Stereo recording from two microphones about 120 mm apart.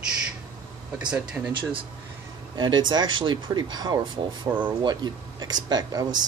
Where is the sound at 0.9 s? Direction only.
10° right (ahead or behind).